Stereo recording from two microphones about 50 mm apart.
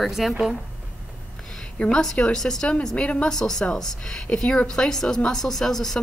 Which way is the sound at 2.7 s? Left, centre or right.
Left.